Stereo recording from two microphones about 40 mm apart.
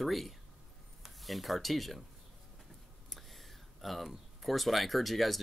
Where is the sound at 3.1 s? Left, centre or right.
Centre.